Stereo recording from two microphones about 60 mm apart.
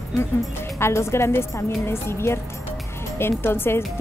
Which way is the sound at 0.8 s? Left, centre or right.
Left.